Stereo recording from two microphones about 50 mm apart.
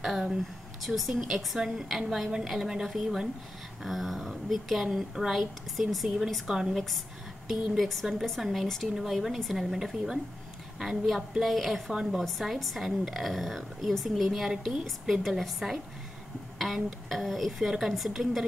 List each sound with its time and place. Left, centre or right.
0.8 s a woman's voice: centre
7.4 s a woman's voice: centre